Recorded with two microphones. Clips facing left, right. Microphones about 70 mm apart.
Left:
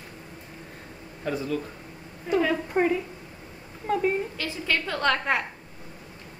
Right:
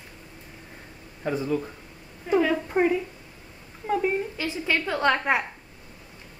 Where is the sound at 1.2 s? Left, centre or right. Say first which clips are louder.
Right 2 dB; centre.